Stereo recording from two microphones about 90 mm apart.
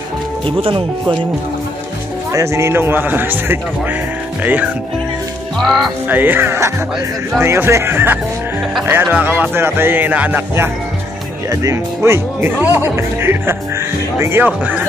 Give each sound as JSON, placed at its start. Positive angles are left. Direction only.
{"t": 0.5, "sound": "speech", "side_deg": -85}
{"t": 2.3, "sound": "speech", "side_deg": -30}
{"t": 5.6, "sound": "speech", "side_deg": 0}
{"t": 6.0, "sound": "speech", "side_deg": -20}
{"t": 11.5, "sound": "speech", "side_deg": -35}